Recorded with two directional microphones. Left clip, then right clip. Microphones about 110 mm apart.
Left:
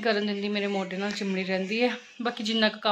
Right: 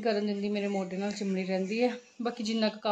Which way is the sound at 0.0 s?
10° right (ahead or behind).